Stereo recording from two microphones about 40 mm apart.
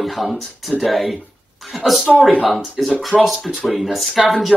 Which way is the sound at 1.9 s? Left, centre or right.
Centre.